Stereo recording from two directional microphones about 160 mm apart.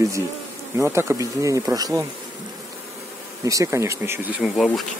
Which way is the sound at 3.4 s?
20° right (ahead or behind).